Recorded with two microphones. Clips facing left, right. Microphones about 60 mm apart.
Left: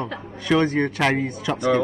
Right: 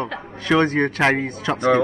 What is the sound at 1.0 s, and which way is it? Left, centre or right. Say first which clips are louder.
Speech: right 2 dB; right.